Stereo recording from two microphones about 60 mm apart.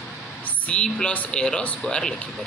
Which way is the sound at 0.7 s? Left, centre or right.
Centre.